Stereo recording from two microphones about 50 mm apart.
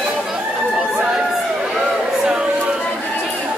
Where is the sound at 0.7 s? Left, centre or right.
Right.